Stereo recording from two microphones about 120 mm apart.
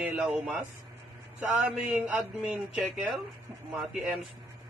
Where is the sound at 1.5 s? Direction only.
10° right (ahead or behind).